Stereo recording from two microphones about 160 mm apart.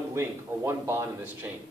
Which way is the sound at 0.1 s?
15° right (ahead or behind).